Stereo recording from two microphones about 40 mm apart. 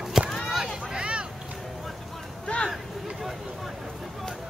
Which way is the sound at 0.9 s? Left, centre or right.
Right.